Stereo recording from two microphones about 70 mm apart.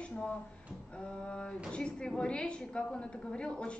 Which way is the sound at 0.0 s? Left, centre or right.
Centre.